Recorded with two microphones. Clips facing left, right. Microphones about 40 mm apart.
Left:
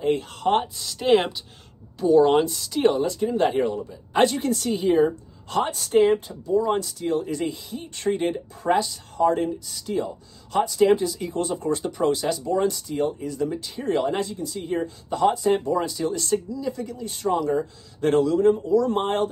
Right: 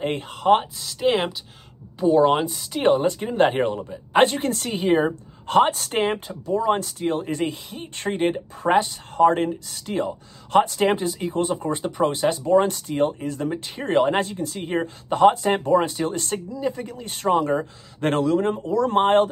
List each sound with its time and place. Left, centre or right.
0.3 s speech: centre
2.0 s speech: right
2.3 s speech: centre
2.6 s speech: right